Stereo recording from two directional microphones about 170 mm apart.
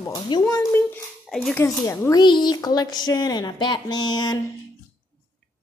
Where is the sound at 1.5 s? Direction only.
15° left (ahead or behind).